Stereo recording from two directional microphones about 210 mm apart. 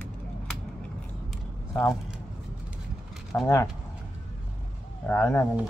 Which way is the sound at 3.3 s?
10° left (ahead or behind).